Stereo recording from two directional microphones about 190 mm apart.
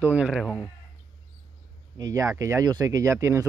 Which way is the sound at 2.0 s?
20° right (ahead or behind).